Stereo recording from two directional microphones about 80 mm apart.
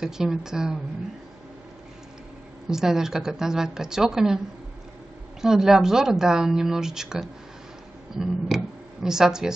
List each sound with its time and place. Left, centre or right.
0.0 s speech: centre
2.7 s speech: centre
5.4 s speech: centre